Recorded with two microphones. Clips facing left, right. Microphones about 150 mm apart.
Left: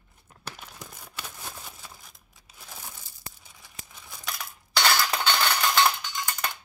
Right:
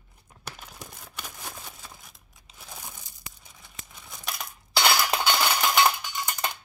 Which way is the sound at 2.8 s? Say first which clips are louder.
Right 1 dB; 15° right (ahead or behind).